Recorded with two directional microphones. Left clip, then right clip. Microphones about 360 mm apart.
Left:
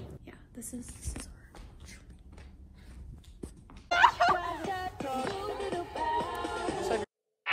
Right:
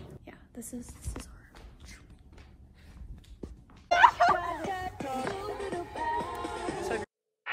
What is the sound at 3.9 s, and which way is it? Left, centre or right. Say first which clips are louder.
Music: right 2 dB; centre.